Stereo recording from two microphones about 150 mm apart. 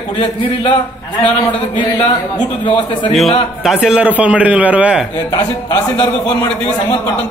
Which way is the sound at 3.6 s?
Centre (ahead or behind).